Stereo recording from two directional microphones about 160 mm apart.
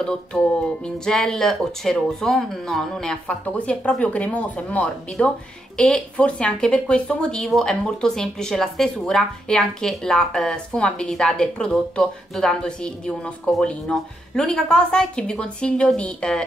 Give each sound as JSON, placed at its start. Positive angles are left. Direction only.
{"t": 0.0, "sound": "speech", "side_deg": 5}